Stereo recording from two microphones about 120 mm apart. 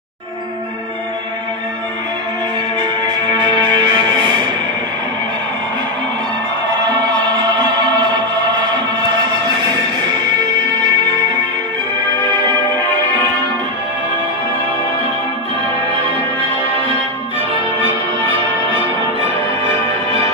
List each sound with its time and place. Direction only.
3.6 s music: 35° right (ahead or behind)
6.9 s music: 40° right (ahead or behind)
9.6 s music: 40° right (ahead or behind)
12.1 s music: 40° right (ahead or behind)